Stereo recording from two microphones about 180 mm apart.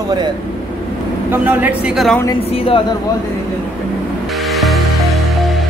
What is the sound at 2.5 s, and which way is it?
Speech, 30° left (ahead or behind).